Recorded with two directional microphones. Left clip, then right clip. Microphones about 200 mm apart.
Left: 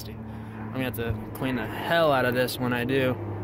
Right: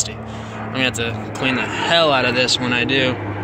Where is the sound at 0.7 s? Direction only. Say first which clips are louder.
Right 11 dB; 15° left (ahead or behind).